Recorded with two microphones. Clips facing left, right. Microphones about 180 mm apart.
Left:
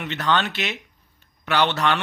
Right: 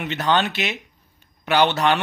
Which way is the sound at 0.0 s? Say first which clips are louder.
Right 2 dB; 10° right (ahead or behind).